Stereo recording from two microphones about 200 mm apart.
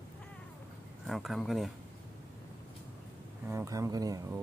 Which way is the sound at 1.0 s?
Centre (ahead or behind).